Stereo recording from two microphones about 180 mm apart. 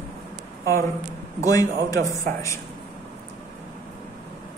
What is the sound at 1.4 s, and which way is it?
Speech, 20° left (ahead or behind).